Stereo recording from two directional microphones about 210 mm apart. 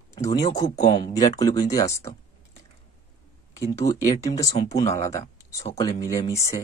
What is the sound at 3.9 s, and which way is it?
Speech, 15° left (ahead or behind).